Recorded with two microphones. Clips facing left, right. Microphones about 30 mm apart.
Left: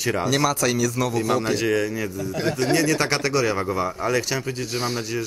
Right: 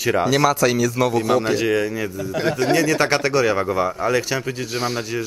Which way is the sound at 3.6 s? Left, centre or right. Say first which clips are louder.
Right 4 dB; right.